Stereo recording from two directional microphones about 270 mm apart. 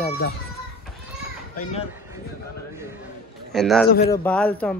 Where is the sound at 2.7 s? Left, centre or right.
Centre.